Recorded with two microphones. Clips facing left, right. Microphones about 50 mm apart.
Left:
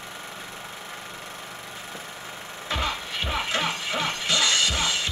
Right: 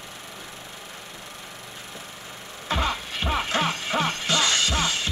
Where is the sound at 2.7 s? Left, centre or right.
Right.